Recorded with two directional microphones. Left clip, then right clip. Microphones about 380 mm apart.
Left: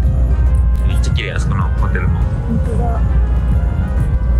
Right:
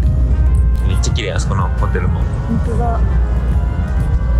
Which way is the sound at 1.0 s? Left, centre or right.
Centre.